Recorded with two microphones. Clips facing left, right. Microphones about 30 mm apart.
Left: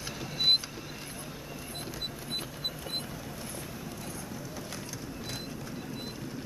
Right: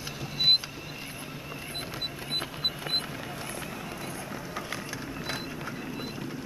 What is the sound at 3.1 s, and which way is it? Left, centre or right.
Vehicle, right.